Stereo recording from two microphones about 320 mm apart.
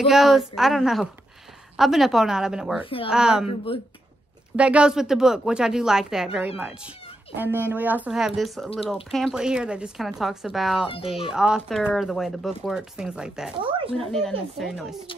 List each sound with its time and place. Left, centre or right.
0.0 s speech: centre
3.4 s speech: centre
4.6 s speech: centre
13.6 s speech: centre
13.9 s speech: centre